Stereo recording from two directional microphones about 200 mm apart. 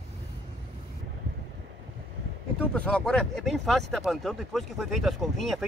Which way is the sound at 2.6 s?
5° left (ahead or behind).